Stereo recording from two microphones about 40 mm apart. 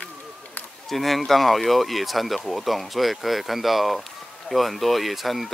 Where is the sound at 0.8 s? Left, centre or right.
Centre.